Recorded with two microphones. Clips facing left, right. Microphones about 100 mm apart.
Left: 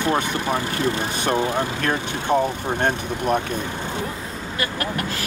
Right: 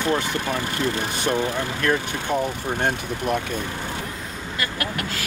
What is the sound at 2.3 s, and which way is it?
Speech, 50° left (ahead or behind).